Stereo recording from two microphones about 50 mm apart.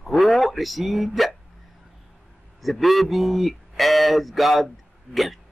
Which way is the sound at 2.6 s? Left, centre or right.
Centre.